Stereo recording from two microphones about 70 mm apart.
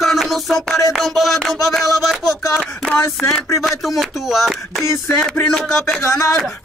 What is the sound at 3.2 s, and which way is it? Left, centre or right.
Music, centre.